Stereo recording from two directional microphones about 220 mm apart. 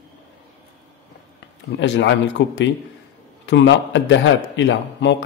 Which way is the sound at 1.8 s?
55° left (ahead or behind).